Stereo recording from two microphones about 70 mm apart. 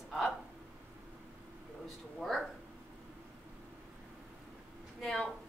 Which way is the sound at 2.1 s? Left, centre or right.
Centre.